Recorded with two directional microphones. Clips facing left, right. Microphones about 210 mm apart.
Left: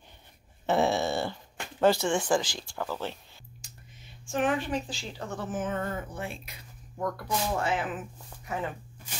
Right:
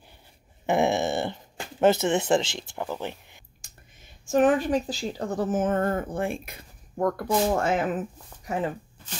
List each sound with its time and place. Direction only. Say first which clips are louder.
0.7 s dog: right 2 dB; 15° right (ahead or behind)
1.8 s speech: right 3 dB; 20° right (ahead or behind)
3.6 s speech: left 2 dB; 45° right (ahead or behind)